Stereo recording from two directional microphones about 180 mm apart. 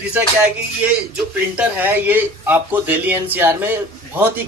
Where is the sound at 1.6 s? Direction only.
10° right (ahead or behind).